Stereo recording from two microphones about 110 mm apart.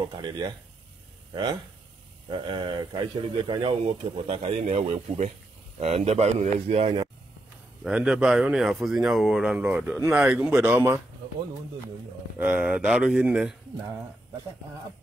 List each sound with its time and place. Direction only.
0.1 s a man's voice: 40° right (ahead or behind); by 6.9 s 80° right
7.8 s speech: 10° right (ahead or behind)
12.4 s speech: 15° right (ahead or behind)